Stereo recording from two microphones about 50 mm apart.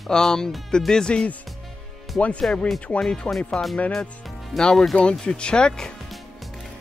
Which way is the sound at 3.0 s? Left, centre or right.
Centre.